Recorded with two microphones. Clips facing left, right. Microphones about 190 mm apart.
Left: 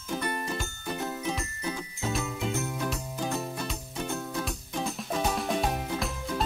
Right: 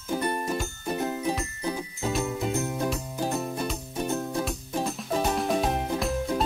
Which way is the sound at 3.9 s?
25° right (ahead or behind).